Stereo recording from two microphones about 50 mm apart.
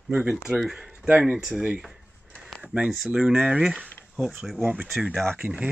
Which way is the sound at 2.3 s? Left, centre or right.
Right.